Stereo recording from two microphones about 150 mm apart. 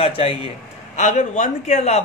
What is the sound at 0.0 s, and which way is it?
Speech, 40° left (ahead or behind).